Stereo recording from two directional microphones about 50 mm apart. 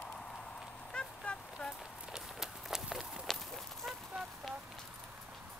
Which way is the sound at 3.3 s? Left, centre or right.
Centre.